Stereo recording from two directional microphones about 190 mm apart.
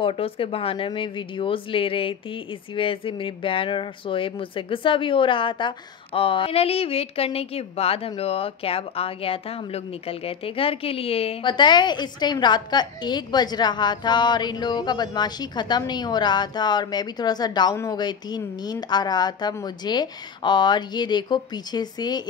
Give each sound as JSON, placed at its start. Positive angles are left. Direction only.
{"t": 0.0, "sound": "speech", "side_deg": 30}